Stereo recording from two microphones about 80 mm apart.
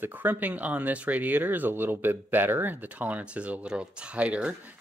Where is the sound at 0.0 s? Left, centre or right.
Right.